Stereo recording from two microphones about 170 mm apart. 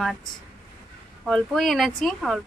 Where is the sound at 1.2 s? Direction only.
5° left (ahead or behind).